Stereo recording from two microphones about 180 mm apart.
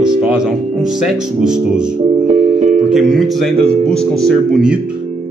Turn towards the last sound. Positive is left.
turn(degrees=0)  # may be behind; listen again after turning